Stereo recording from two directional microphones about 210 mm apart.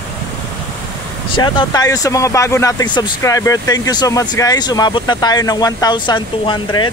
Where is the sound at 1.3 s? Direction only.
20° left (ahead or behind).